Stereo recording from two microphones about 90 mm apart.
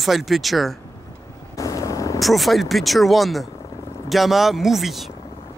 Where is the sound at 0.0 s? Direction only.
Centre (ahead or behind).